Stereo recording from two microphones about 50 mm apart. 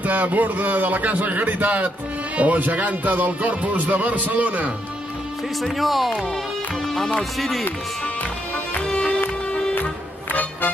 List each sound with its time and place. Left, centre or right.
0.0 s a man's voice: right
5.6 s speech: centre
7.3 s speech: centre
8.8 s music: centre